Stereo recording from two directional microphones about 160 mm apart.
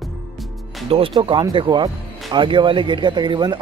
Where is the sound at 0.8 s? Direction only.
35° right (ahead or behind).